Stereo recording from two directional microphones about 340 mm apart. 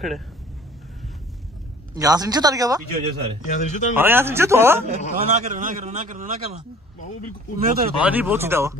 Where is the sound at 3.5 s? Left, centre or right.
Left.